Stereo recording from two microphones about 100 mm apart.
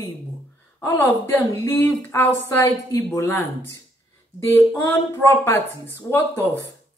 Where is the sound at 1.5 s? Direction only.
35° left (ahead or behind).